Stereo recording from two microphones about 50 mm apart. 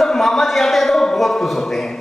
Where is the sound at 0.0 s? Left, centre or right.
Centre.